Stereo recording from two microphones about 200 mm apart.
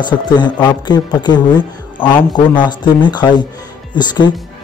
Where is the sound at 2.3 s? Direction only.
20° left (ahead or behind).